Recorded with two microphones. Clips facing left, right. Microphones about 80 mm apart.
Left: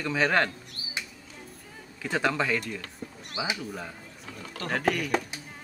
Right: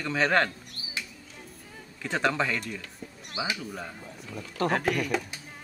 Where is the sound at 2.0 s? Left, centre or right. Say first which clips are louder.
Even; centre.